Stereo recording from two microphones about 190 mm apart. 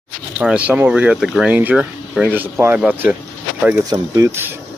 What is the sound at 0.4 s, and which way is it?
Speech, 5° right (ahead or behind).